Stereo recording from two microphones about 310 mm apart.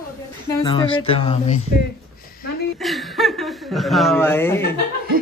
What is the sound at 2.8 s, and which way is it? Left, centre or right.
Chuckle, centre.